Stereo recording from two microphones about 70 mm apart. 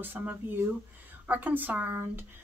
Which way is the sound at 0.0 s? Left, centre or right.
Right.